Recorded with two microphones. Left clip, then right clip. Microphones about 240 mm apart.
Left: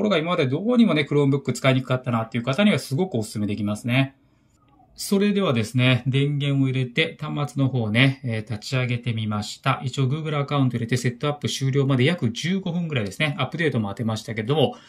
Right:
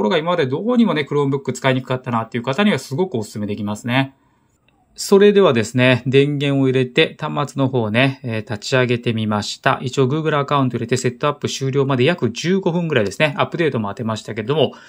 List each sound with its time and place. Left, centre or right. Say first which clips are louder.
0.0 s speech: right 4 dB; centre